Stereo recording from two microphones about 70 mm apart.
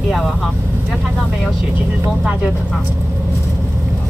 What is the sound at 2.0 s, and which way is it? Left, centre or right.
Speech, centre.